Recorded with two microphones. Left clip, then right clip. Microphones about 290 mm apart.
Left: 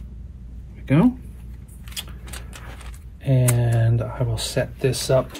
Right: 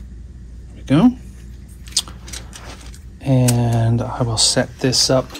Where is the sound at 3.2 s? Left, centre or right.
Centre.